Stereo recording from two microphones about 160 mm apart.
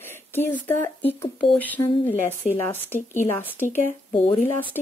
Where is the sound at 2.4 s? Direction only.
50° left (ahead or behind).